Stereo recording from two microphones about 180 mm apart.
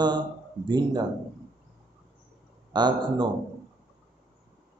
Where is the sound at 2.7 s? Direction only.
25° right (ahead or behind).